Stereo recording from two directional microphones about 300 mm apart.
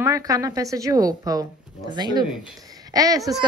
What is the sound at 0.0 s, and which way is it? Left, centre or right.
Speech, centre.